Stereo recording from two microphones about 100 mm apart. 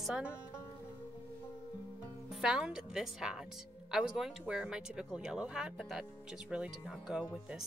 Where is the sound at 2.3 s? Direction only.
5° right (ahead or behind).